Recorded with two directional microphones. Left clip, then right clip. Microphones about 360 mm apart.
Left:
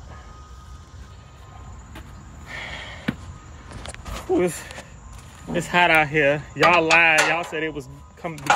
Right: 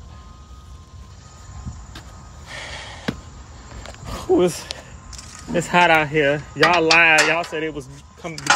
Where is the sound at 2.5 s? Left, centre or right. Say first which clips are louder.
Even; centre.